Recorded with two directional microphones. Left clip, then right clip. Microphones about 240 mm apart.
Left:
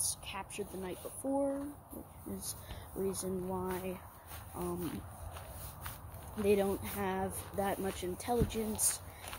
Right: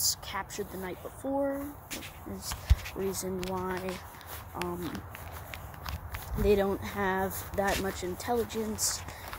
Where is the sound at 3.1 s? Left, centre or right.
Centre.